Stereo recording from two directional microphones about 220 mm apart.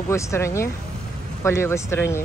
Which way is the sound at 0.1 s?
15° left (ahead or behind).